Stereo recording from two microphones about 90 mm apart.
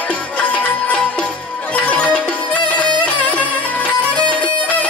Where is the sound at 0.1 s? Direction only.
15° left (ahead or behind).